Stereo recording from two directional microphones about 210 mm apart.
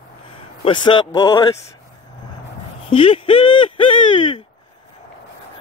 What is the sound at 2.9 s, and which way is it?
Speech, 25° left (ahead or behind).